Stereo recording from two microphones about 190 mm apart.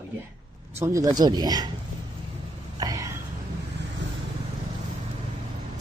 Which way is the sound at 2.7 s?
20° right (ahead or behind).